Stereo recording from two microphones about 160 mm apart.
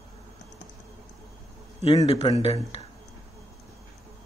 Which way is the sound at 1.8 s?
40° left (ahead or behind).